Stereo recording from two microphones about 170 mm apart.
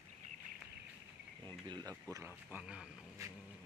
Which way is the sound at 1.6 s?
25° right (ahead or behind).